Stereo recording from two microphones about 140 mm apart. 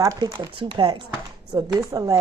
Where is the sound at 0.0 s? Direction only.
25° right (ahead or behind).